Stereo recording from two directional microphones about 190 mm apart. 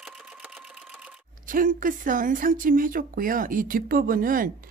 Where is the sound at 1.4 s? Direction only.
45° right (ahead or behind).